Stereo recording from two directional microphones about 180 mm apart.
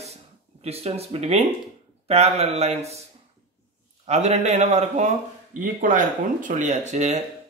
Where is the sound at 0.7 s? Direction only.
35° right (ahead or behind).